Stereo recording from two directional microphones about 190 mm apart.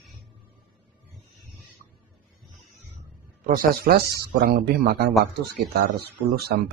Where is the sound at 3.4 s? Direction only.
50° right (ahead or behind).